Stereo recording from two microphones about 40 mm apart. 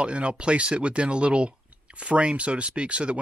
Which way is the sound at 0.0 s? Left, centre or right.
Right.